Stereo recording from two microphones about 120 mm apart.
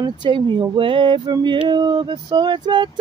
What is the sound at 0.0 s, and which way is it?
Speech, 40° right (ahead or behind).